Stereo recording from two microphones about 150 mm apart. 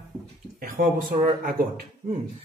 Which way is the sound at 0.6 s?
75° right (ahead or behind).